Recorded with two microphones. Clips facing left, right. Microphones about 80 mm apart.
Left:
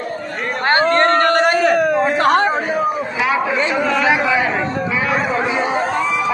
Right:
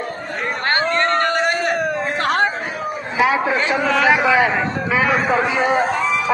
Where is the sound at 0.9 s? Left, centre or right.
Left.